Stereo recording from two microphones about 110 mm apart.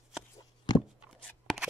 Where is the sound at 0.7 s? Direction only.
40° left (ahead or behind).